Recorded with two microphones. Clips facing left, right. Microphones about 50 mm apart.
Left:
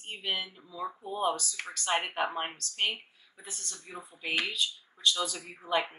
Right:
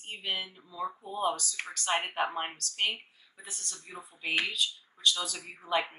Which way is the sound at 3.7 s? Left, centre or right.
Centre.